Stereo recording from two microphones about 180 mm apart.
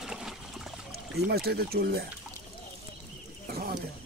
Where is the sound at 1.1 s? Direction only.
60° right (ahead or behind).